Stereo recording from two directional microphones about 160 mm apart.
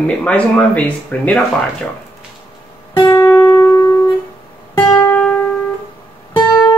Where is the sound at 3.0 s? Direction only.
25° left (ahead or behind); by 5.3 s 10° left (ahead or behind).